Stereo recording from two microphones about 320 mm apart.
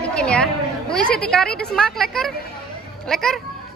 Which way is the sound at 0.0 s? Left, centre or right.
Centre.